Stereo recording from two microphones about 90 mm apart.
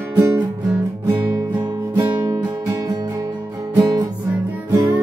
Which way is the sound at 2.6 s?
45° right (ahead or behind).